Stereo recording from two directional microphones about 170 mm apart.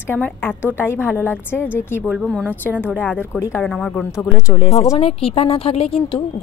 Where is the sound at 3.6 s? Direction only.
5° left (ahead or behind).